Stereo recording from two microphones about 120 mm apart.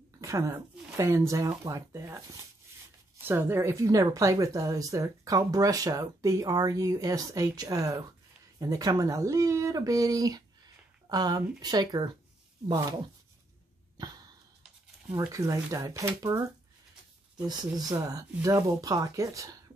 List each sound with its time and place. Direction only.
0.2 s speech: 30° right (ahead or behind)
3.3 s speech: 20° right (ahead or behind)
15.0 s speech: 25° right (ahead or behind)
17.5 s speech: 35° right (ahead or behind)